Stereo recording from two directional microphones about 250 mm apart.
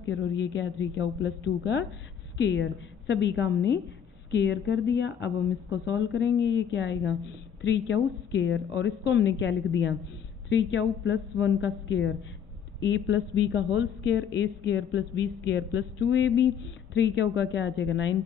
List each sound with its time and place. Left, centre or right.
0.0 s a woman's voice: left